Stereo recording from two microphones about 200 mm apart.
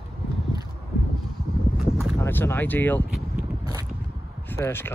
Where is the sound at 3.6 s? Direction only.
20° right (ahead or behind).